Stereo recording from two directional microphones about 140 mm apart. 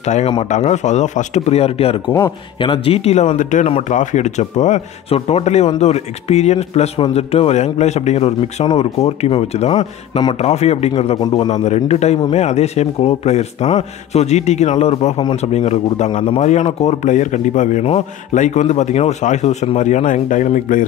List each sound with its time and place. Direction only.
0.0 s speech: 55° left (ahead or behind)
2.0 s a man's voice: 20° left (ahead or behind)
2.6 s speech: 40° left (ahead or behind)
3.3 s speech: 65° left (ahead or behind)
11.3 s a man's voice: 35° left (ahead or behind)
11.6 s speech: 50° left (ahead or behind)